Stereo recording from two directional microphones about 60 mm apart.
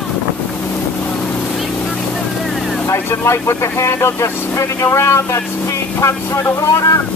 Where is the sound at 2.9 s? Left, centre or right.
Left.